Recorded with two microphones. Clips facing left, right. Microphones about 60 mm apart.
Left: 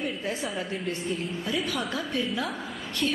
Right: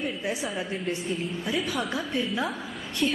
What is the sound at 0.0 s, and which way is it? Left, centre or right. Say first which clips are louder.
A woman's voice: right 1 dB; centre.